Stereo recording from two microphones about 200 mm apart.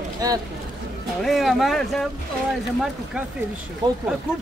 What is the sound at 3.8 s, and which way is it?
Speech, 20° right (ahead or behind).